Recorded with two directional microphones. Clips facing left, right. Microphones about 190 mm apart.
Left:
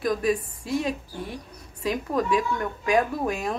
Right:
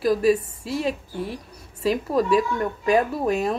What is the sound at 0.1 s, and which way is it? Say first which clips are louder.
A woman's voice: right 5 dB; 5° right (ahead or behind).